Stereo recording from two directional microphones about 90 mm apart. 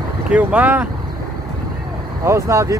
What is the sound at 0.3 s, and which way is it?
Speech, 15° right (ahead or behind).